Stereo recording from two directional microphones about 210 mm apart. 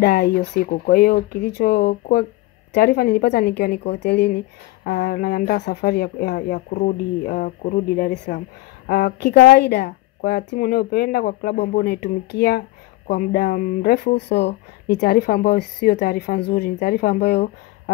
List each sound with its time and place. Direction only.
0.0 s a woman's voice: 50° left (ahead or behind)